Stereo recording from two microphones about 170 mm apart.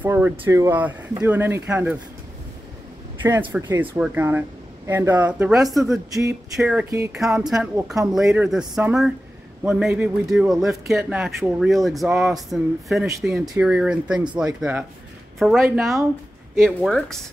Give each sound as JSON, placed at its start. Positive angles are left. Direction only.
{"t": 0.0, "sound": "speech", "side_deg": -10}
{"t": 3.2, "sound": "speech", "side_deg": -10}
{"t": 6.0, "sound": "a sound", "side_deg": -20}
{"t": 6.5, "sound": "a man's voice", "side_deg": -5}